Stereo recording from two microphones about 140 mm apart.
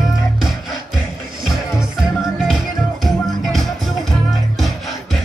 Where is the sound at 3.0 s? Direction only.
Centre (ahead or behind).